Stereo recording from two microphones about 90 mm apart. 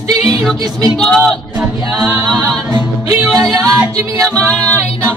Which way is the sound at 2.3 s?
5° left (ahead or behind).